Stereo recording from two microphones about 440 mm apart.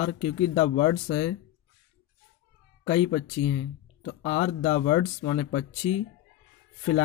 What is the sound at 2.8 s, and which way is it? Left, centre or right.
Speech, centre.